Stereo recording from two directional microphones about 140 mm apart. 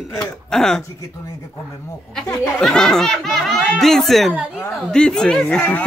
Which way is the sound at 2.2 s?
25° left (ahead or behind).